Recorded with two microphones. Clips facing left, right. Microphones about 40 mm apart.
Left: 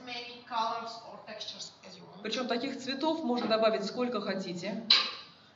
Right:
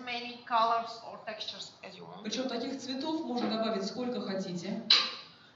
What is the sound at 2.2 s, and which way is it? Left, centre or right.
A man's voice, left.